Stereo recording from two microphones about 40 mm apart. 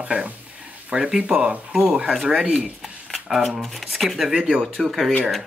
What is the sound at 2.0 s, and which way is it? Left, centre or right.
Speech, right.